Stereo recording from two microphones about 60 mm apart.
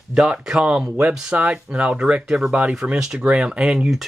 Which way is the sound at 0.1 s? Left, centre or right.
Centre.